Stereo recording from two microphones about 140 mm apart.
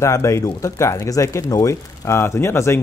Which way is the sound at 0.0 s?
20° left (ahead or behind).